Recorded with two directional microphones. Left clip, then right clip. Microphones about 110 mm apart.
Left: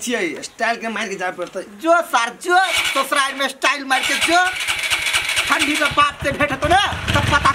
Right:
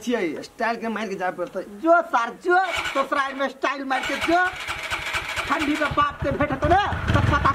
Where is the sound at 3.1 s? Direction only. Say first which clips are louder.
Left 5 dB; 20° left (ahead or behind).